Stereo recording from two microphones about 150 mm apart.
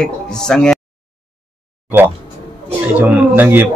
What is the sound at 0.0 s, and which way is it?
Speech, 5° left (ahead or behind).